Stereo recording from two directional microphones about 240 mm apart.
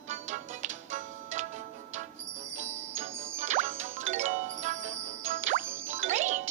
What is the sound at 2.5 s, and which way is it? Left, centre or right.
Music, right.